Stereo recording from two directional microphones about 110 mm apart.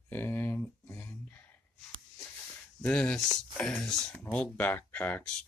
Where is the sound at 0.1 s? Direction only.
20° left (ahead or behind).